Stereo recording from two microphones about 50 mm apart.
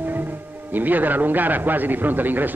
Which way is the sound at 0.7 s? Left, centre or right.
Right.